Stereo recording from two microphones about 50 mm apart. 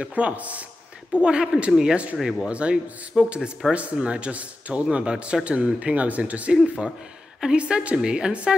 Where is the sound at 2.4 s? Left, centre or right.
Right.